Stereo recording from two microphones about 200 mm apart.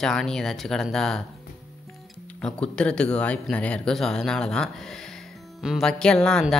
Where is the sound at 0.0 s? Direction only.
5° left (ahead or behind).